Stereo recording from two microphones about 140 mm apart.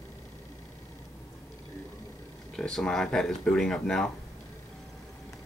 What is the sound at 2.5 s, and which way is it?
Speech, 5° left (ahead or behind).